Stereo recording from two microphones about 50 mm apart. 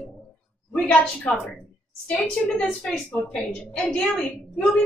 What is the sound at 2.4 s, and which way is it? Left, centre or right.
A woman's voice, centre.